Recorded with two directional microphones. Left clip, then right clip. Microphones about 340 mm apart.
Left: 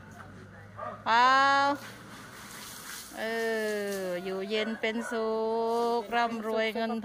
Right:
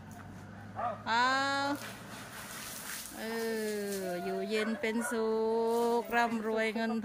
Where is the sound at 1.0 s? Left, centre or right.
Centre.